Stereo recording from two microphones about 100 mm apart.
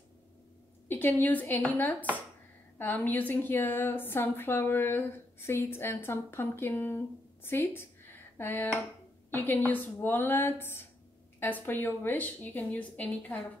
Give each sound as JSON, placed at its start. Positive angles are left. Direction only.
{"t": 0.8, "sound": "a woman's voice", "side_deg": 20}